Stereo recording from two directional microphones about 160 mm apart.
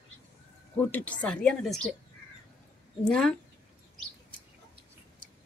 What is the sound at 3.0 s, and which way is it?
Speech, 5° left (ahead or behind).